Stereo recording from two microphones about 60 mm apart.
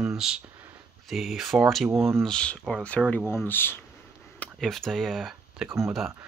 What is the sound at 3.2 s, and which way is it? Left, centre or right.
Speech, left.